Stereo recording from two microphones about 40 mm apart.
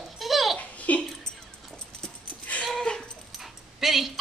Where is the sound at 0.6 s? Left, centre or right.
Left.